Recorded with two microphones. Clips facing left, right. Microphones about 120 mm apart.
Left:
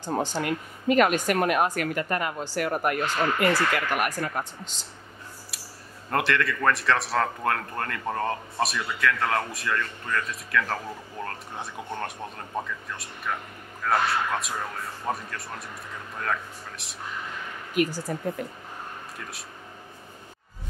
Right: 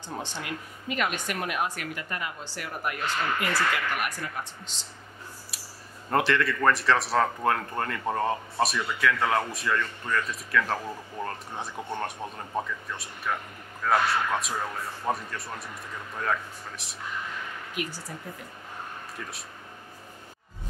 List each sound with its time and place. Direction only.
0.0 s speech: 40° left (ahead or behind)
5.5 s a sound: centre (ahead or behind)
6.0 s speech: centre (ahead or behind)
17.7 s speech: 45° left (ahead or behind)